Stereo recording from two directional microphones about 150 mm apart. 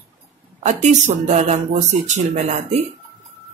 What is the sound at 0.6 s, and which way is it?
Speech, 55° right (ahead or behind).